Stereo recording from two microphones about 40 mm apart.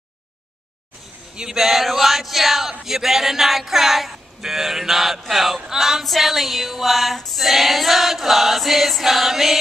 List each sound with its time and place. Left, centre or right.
1.3 s speech: centre
6.0 s choir: centre